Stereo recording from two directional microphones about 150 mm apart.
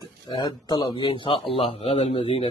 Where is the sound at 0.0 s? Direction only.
25° left (ahead or behind).